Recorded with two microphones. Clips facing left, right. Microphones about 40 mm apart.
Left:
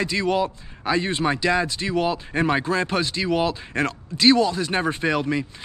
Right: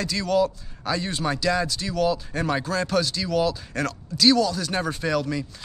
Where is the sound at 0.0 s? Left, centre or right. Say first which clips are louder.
Left 1 dB; left.